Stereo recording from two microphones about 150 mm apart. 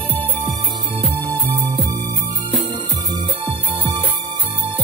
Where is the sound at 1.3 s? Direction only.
30° right (ahead or behind).